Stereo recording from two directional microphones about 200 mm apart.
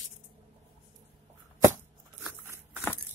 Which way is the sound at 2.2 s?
10° right (ahead or behind).